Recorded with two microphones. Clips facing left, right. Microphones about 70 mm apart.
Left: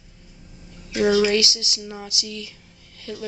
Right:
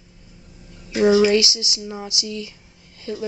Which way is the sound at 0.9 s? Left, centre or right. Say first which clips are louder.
Right 3 dB; centre.